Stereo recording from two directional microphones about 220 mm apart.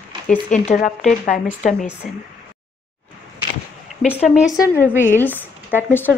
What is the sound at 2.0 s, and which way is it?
Speech, centre (ahead or behind).